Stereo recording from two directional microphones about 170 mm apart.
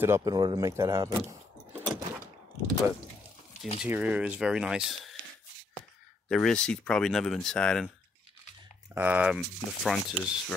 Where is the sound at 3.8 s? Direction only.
10° right (ahead or behind).